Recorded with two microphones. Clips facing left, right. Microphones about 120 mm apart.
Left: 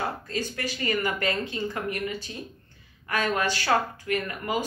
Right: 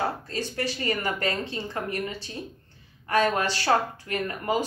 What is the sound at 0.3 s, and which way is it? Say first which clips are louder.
Speech: right 1 dB; 35° right (ahead or behind).